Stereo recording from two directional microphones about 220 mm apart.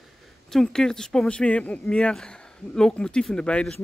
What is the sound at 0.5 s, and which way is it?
Speech, centre (ahead or behind).